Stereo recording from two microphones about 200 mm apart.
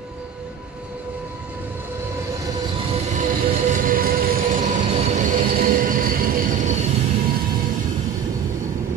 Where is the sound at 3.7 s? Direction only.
45° right (ahead or behind).